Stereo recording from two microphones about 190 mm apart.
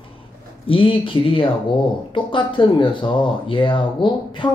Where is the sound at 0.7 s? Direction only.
30° left (ahead or behind).